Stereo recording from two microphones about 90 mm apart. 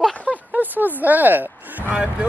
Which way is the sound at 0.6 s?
20° right (ahead or behind).